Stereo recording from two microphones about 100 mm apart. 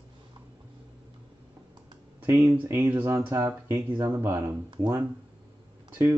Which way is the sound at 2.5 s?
20° right (ahead or behind).